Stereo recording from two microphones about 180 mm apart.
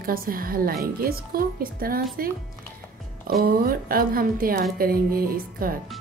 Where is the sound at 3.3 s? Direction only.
55° right (ahead or behind).